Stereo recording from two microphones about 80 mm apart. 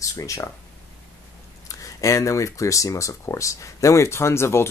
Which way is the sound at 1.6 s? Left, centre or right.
Left.